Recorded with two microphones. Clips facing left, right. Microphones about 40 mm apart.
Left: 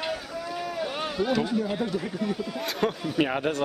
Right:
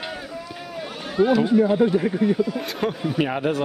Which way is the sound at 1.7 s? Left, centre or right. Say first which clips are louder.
Right 10 dB; right.